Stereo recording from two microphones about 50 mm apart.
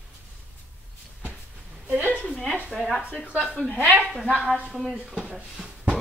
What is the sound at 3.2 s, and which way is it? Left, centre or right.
Speech, centre.